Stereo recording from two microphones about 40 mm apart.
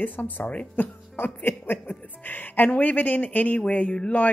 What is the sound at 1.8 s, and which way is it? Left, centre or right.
Speech, left.